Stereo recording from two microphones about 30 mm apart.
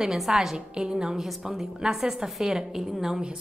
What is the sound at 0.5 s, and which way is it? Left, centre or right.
Speech, right.